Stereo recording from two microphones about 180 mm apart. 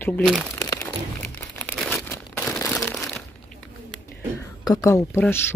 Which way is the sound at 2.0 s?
10° left (ahead or behind).